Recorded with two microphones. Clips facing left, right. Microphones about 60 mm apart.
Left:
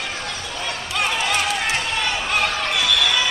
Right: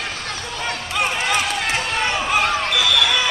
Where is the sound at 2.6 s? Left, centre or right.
Right.